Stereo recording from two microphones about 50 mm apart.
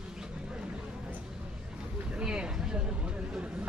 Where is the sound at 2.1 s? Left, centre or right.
Centre.